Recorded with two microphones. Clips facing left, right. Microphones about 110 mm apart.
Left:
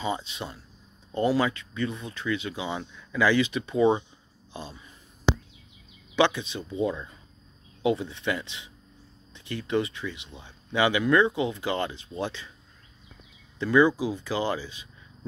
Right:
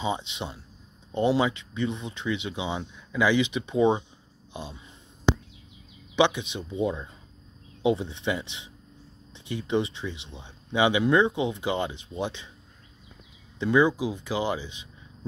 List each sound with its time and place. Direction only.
0.0 s speech: 20° right (ahead or behind)
6.1 s speech: 20° right (ahead or behind)
13.6 s speech: 15° right (ahead or behind)